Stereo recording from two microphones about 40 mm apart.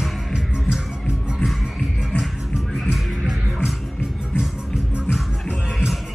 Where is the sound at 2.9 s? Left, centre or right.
Centre.